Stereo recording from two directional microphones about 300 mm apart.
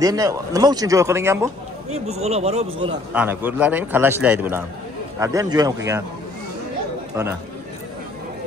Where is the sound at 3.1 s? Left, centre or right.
Centre.